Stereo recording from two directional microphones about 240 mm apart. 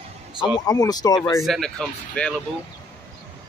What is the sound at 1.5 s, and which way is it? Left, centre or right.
Speech, centre.